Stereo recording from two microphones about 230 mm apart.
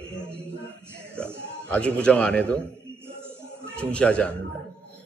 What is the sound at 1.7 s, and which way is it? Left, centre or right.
Speech, centre.